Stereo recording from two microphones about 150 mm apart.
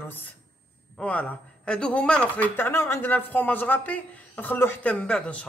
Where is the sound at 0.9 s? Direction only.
10° left (ahead or behind).